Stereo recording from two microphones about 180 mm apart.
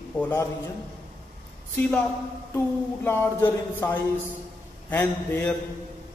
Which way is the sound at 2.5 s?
10° left (ahead or behind).